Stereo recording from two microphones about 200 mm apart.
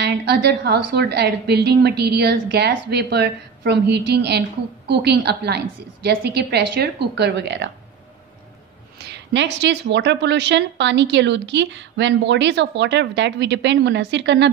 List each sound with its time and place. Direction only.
0.0 s a woman's voice: 60° right (ahead or behind)
9.0 s a woman's voice: 60° right (ahead or behind)